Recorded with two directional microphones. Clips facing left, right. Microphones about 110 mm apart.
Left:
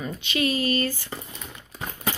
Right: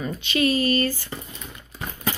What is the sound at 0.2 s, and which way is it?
Speech, 15° left (ahead or behind).